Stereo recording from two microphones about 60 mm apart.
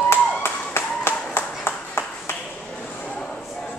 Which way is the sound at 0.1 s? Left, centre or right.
Left.